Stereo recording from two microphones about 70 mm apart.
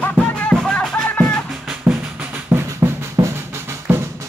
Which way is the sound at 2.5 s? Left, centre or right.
Right.